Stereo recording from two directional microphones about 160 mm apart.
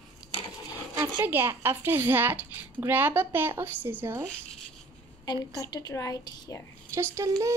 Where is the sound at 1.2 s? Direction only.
15° right (ahead or behind).